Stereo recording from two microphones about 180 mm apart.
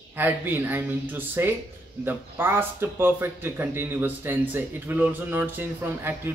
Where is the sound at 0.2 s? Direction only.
10° right (ahead or behind).